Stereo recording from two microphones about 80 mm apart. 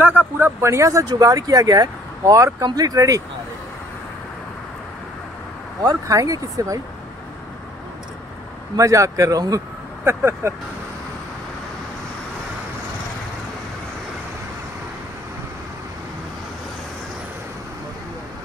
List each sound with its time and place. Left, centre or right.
0.0 s speech: right
5.8 s speech: right
8.7 s speech: right
10.0 s speech: right